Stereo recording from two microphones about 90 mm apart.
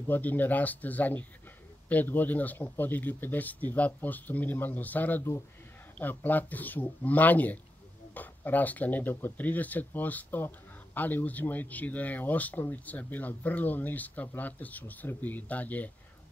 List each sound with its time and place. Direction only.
0.0 s speech: 20° left (ahead or behind)